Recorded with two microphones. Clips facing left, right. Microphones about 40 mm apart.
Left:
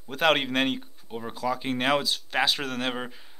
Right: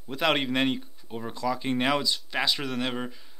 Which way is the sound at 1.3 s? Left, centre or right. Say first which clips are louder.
Even; left.